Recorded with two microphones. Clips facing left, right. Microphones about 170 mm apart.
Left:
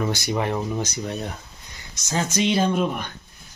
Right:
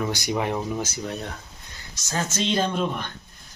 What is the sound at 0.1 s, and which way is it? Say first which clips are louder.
Speech: left 1 dB; 15° right (ahead or behind).